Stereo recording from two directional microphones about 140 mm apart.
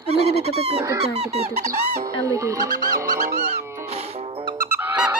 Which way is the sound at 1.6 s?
25° right (ahead or behind).